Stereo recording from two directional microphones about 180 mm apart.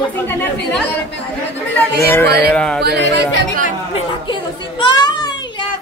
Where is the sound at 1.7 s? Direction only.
10° left (ahead or behind).